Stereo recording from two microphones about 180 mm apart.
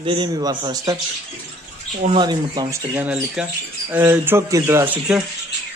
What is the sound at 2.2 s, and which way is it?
Speech, 25° right (ahead or behind).